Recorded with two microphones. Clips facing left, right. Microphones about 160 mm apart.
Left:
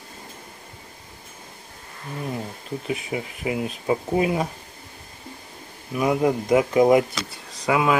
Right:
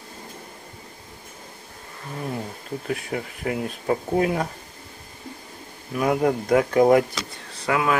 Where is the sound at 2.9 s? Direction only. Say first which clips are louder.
Even; 5° left (ahead or behind).